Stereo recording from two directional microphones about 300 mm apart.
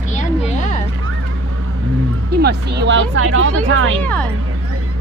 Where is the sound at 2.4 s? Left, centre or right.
Right.